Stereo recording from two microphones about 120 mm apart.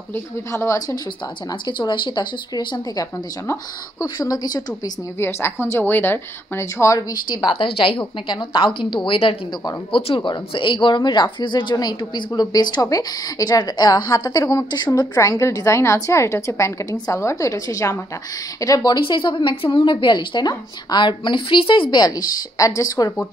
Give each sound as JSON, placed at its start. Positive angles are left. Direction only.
{"t": 0.1, "sound": "a woman's voice", "side_deg": 20}
{"t": 4.2, "sound": "a woman's voice", "side_deg": 30}
{"t": 5.2, "sound": "a woman's voice", "side_deg": 20}
{"t": 7.1, "sound": "a woman's voice", "side_deg": 40}